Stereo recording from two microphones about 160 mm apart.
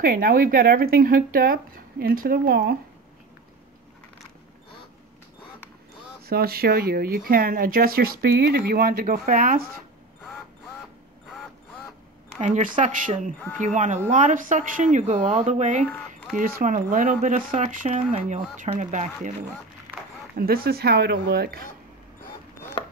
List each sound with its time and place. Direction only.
0.0 s speech: 60° right (ahead or behind)
6.2 s speech: 70° right (ahead or behind)
12.4 s speech: 50° right (ahead or behind)
16.3 s speech: 60° right (ahead or behind)
20.3 s speech: 70° right (ahead or behind)